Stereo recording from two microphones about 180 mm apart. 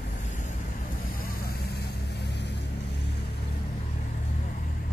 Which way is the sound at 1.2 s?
60° left (ahead or behind).